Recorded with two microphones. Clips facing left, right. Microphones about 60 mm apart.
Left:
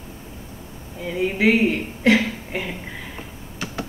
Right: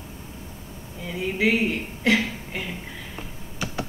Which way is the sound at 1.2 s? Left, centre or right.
Left.